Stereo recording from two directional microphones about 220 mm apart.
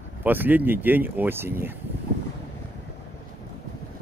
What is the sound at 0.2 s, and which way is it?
Speech, 10° right (ahead or behind).